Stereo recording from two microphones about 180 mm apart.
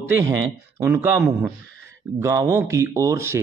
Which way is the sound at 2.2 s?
20° right (ahead or behind).